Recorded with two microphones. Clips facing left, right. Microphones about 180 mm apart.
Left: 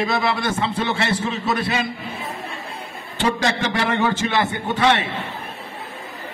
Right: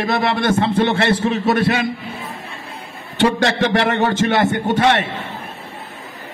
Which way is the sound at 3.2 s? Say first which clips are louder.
Right 5 dB; 70° right (ahead or behind).